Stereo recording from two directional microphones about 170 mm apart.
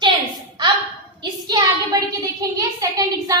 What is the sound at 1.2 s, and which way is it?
A woman's voice, 25° right (ahead or behind).